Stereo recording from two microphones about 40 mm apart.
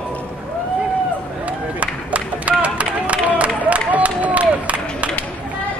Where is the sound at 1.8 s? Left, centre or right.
Right.